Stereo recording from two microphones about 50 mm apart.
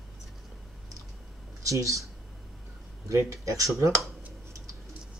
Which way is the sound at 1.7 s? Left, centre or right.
Right.